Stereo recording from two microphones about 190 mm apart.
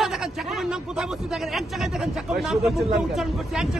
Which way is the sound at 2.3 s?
Centre (ahead or behind).